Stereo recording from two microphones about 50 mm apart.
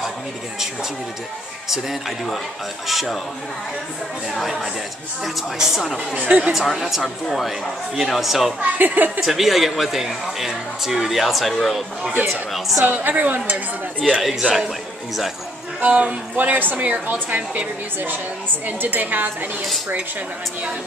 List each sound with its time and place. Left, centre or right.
1.7 s a man's voice: centre
4.3 s speech: centre
6.1 s speech: right
6.4 s speech: centre
8.5 s speech: right
9.2 s speech: centre
12.9 s speech: right
14.0 s a man's voice: centre
15.8 s a woman's voice: right
16.3 s a woman's voice: right
18.8 s speech: right